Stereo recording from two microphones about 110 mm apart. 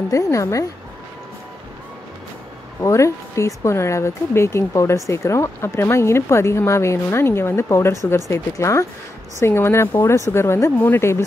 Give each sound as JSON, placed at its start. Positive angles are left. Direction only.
{"t": 0.1, "sound": "speech", "side_deg": 30}
{"t": 2.8, "sound": "speech", "side_deg": 25}